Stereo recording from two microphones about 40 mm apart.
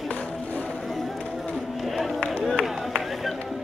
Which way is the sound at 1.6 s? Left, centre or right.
Centre.